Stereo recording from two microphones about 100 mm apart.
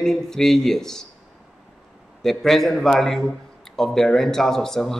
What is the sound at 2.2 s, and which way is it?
Speech, centre (ahead or behind).